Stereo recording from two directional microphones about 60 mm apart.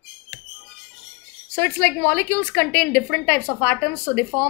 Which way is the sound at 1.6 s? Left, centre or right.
Left.